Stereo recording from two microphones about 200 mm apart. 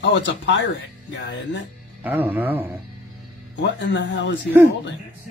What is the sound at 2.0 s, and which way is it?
Speech, 10° right (ahead or behind).